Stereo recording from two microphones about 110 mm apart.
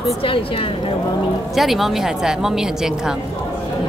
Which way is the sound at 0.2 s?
55° left (ahead or behind).